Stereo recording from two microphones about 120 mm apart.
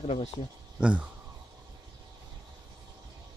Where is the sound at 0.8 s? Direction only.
10° right (ahead or behind).